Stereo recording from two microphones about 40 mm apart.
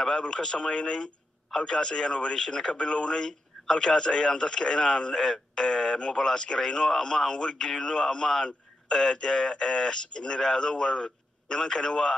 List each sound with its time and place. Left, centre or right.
0.0 s a man's voice: centre